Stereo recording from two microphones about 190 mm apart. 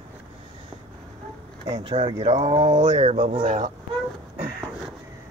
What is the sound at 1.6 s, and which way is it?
Speech, 25° right (ahead or behind).